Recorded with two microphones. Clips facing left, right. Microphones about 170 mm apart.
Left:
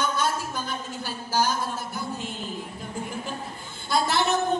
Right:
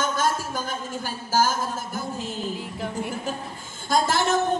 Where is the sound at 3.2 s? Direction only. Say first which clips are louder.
Right 3 dB; 45° right (ahead or behind).